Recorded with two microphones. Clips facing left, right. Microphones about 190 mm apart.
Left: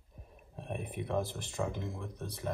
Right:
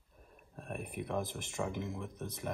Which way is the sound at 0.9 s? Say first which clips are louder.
Left 3 dB; 15° right (ahead or behind).